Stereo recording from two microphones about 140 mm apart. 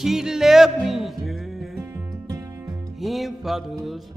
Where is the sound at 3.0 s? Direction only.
Centre (ahead or behind).